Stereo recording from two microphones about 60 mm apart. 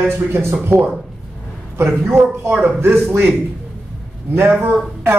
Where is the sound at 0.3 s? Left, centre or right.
Right.